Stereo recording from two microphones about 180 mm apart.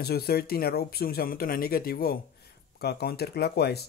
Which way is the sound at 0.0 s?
60° left (ahead or behind).